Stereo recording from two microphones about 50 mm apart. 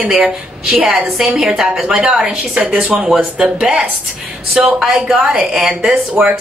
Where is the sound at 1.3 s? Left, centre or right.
Centre.